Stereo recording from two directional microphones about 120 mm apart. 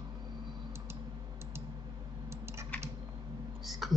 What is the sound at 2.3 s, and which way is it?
Typing, 20° right (ahead or behind).